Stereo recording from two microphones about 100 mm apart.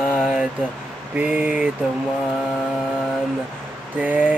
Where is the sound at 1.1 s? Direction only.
15° right (ahead or behind).